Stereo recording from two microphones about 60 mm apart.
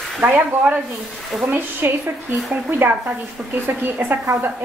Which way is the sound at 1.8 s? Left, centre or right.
Right.